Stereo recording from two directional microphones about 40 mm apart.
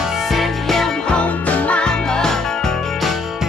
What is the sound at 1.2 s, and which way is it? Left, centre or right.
Music, left.